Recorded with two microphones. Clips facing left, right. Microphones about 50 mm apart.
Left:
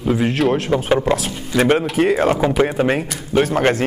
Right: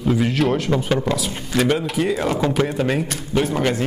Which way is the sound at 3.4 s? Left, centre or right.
Left.